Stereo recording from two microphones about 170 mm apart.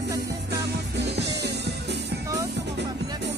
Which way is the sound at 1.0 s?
85° right.